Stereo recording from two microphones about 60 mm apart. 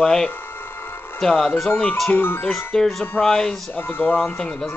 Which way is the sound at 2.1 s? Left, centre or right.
Left.